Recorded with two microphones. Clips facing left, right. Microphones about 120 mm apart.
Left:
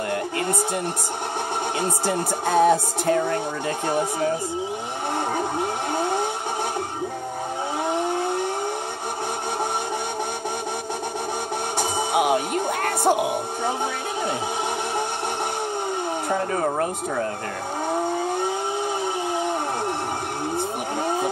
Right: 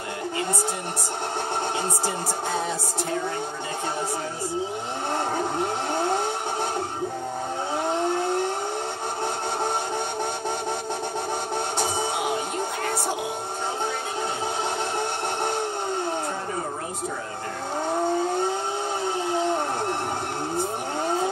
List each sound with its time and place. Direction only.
1.8 s speech: 60° left (ahead or behind)
12.1 s music: 65° left (ahead or behind)
19.0 s a sound: 15° left (ahead or behind)